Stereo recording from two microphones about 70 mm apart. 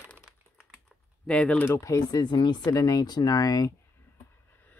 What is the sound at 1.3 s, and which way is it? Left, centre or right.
Speech, centre.